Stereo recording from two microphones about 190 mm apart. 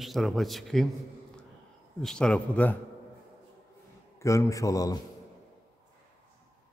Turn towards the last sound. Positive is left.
turn(degrees=15)  # may be behind; listen again after turning